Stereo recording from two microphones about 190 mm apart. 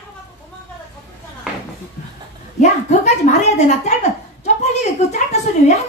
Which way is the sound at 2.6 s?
35° left (ahead or behind).